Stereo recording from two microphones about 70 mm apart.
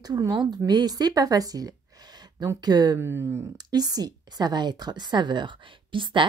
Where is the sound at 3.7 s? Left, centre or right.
Right.